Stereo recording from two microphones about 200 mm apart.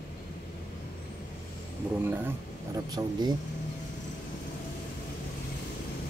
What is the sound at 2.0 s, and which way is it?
Speech, 15° right (ahead or behind).